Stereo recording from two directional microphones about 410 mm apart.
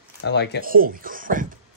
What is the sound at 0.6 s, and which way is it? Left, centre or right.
Speech, right.